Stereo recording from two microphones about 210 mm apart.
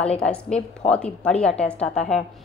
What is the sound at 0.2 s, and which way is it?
A woman's voice, 5° left (ahead or behind).